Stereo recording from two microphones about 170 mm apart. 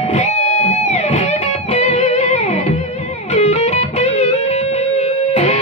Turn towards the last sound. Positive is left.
turn(degrees=40)  # may be behind; listen again after turning